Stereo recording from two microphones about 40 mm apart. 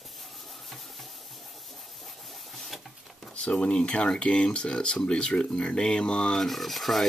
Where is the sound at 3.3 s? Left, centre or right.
Left.